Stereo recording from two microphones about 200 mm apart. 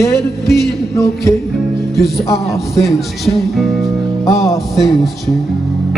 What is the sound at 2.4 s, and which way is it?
Music, centre (ahead or behind).